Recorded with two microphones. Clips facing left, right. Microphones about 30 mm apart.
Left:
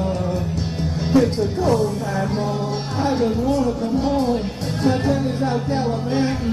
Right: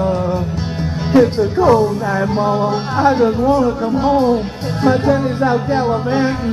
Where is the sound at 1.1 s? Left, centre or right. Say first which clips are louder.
Right 6 dB; centre.